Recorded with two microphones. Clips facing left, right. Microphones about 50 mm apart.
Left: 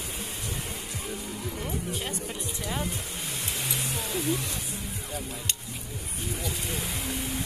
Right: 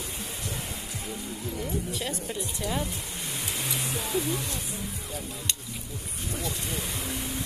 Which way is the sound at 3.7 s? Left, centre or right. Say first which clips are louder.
Right 2 dB; centre.